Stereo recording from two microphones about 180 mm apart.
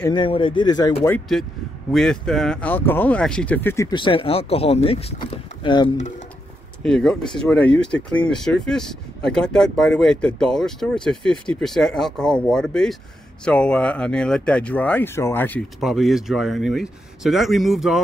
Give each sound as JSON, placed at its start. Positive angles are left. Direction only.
{"t": 0.1, "sound": "a man's voice", "side_deg": 25}
{"t": 1.0, "sound": "speech", "side_deg": 10}
{"t": 3.9, "sound": "speech", "side_deg": 30}
{"t": 5.9, "sound": "speech", "side_deg": 40}
{"t": 6.8, "sound": "speech", "side_deg": 5}
{"t": 15.8, "sound": "speech", "side_deg": 0}